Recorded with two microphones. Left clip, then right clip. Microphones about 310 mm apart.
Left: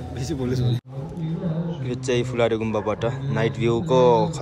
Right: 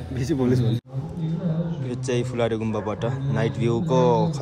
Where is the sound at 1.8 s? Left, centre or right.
Centre.